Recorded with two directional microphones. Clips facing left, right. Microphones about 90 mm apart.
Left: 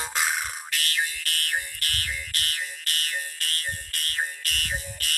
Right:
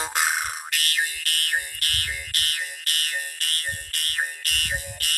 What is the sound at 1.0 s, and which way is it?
Fire alarm, 55° right (ahead or behind).